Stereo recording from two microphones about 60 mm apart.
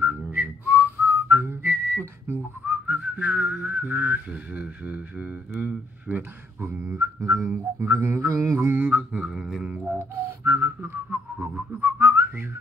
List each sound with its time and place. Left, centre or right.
0.0 s whistling: right
1.3 s whistling: right
2.6 s whistling: right
6.6 s mantra: right
8.8 s a sound: centre
9.3 s didgeridoo: centre
9.9 s whistling: right
11.1 s a sound: right
11.8 s whistling: right